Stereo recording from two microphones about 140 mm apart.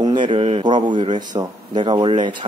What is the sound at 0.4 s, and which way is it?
Speech, 40° right (ahead or behind).